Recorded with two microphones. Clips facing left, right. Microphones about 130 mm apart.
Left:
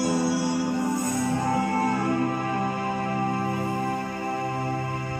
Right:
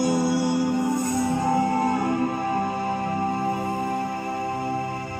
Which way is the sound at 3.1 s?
15° right (ahead or behind).